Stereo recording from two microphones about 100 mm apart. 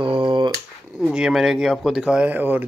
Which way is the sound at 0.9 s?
5° right (ahead or behind).